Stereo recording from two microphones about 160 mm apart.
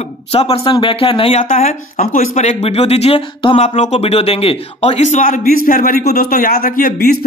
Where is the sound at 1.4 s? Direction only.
50° left (ahead or behind).